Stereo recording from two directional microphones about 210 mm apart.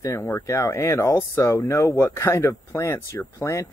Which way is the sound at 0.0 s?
15° left (ahead or behind).